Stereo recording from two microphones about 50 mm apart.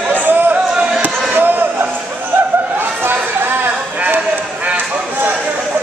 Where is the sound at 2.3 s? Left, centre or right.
Right.